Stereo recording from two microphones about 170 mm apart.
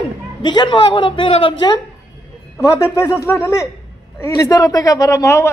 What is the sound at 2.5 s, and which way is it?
A man's voice, 20° left (ahead or behind).